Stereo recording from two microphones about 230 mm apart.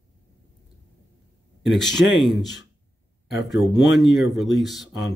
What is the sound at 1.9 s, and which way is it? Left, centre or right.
Speech, left.